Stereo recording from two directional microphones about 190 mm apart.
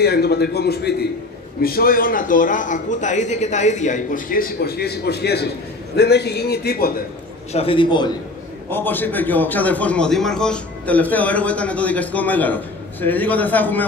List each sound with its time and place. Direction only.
0.0 s a man's voice: 60° left (ahead or behind)
7.5 s a man's voice: 30° left (ahead or behind)
8.6 s a man's voice: 10° left (ahead or behind)